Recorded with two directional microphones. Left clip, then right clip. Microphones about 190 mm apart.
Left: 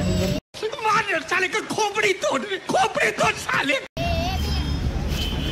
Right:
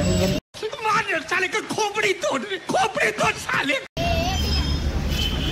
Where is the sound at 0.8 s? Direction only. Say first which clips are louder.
Left 1 dB; centre (ahead or behind).